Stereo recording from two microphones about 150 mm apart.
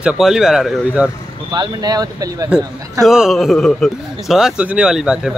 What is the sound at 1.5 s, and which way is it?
Speech, 25° right (ahead or behind).